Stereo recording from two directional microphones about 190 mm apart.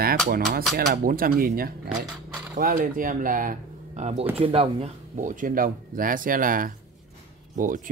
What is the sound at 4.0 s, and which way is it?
Speech, 35° right (ahead or behind).